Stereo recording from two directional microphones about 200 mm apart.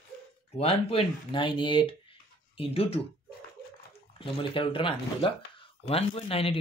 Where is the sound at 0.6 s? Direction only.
30° left (ahead or behind).